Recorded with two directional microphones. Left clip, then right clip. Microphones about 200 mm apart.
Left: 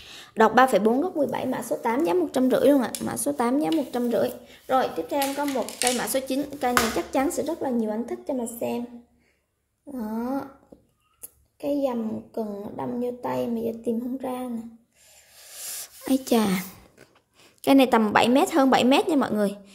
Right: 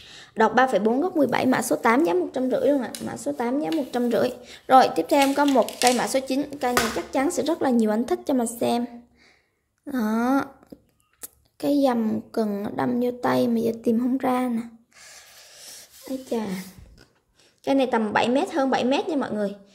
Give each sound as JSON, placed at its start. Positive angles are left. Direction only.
{"t": 0.1, "sound": "a woman's voice", "side_deg": 5}
{"t": 1.1, "sound": "a woman's voice", "side_deg": -20}
{"t": 2.3, "sound": "a woman's voice", "side_deg": 15}
{"t": 3.9, "sound": "speech", "side_deg": -10}
{"t": 4.6, "sound": "a woman's voice", "side_deg": -25}
{"t": 6.0, "sound": "speech", "side_deg": -10}
{"t": 7.0, "sound": "a woman's voice", "side_deg": 5}
{"t": 7.2, "sound": "a woman's voice", "side_deg": -10}
{"t": 9.9, "sound": "a woman's voice", "side_deg": -25}
{"t": 15.4, "sound": "a sound", "side_deg": 10}
{"t": 16.1, "sound": "a child's voice", "side_deg": 25}
{"t": 17.6, "sound": "a woman's voice", "side_deg": 10}